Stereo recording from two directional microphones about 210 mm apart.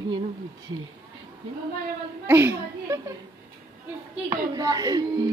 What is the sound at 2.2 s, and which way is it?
Laughter, 10° right (ahead or behind).